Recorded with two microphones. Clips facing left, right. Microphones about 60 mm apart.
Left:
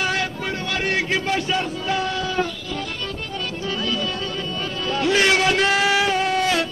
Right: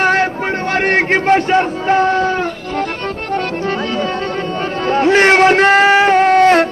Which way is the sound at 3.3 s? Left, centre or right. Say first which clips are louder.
Right 9 dB; right.